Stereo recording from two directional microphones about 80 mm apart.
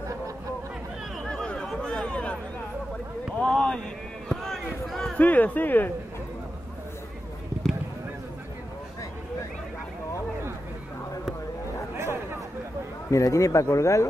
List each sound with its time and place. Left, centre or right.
1.2 s chatter: centre
3.3 s a sound: centre
4.3 s basketball bounce: centre
4.8 s a sound: centre
5.2 s speech: centre
13.1 s a man's voice: left